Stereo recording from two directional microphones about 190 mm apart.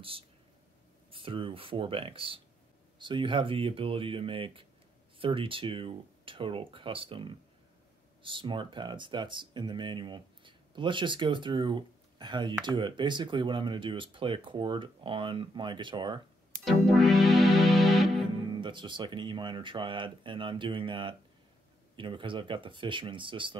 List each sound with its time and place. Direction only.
1.1 s speech: 30° right (ahead or behind)
16.6 s music: centre (ahead or behind)
18.5 s speech: 25° right (ahead or behind)